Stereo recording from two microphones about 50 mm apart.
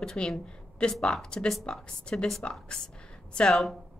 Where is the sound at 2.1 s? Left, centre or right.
Centre.